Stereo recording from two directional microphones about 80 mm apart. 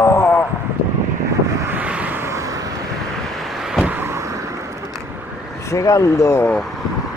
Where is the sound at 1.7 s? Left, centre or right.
Centre.